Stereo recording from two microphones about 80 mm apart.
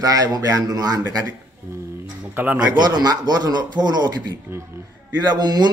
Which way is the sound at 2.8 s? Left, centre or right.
Right.